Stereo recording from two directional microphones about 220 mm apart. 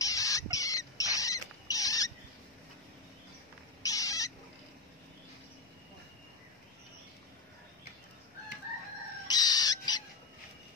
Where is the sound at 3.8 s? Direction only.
15° left (ahead or behind).